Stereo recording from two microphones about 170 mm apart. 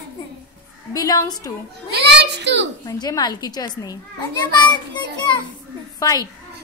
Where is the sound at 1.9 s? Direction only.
90° right.